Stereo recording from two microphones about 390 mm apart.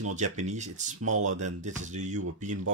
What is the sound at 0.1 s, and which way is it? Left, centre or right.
Speech, centre.